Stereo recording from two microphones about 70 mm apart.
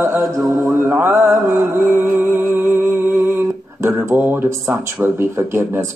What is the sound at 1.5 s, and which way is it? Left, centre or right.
Music, right.